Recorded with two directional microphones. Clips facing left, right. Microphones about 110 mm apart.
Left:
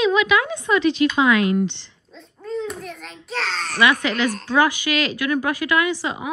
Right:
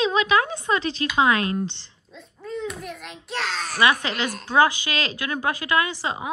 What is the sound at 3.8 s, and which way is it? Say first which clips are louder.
A woman's voice: left 3 dB; 30° right (ahead or behind).